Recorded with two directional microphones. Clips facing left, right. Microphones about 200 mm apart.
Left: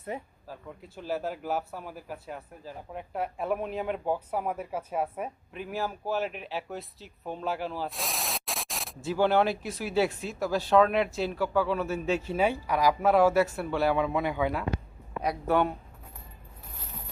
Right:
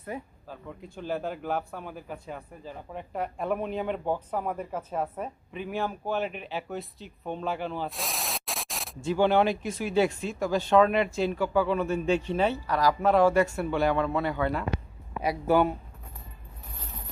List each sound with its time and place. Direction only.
0.1 s speech: 25° left (ahead or behind)
0.5 s speech: 5° left (ahead or behind)
15.2 s speech: centre (ahead or behind)